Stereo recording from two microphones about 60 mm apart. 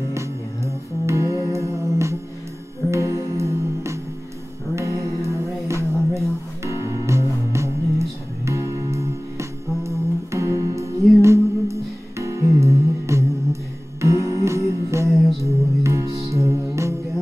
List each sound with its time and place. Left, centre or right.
1.0 s music: right